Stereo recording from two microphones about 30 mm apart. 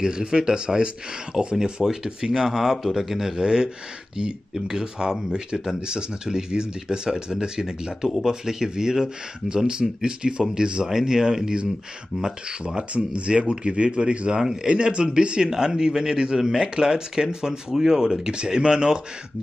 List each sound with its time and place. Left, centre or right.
0.0 s speech: right
0.7 s speech: centre
1.4 s speech: right; by 3.3 s centre
3.3 s speech: right
12.9 s speech: right